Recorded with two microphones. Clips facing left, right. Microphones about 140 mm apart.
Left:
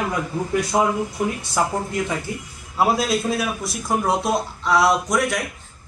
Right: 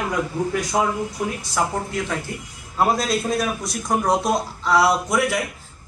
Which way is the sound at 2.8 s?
Centre (ahead or behind).